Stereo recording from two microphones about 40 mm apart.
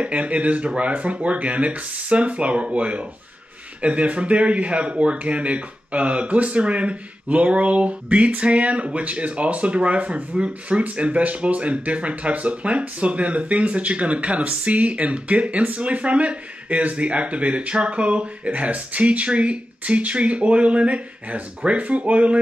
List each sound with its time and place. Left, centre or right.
0.0 s speech: right